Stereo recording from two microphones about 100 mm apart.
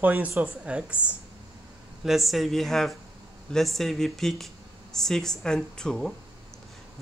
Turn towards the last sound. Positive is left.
turn(degrees=10)  # may be behind; listen again after turning